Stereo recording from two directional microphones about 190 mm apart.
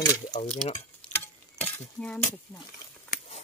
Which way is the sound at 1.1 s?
10° left (ahead or behind).